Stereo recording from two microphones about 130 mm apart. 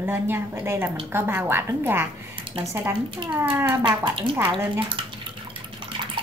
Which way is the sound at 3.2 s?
40° right (ahead or behind).